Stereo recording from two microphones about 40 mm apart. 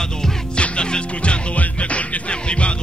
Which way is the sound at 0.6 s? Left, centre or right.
Left.